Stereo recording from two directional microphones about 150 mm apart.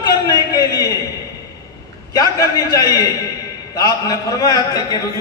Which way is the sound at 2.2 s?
25° left (ahead or behind).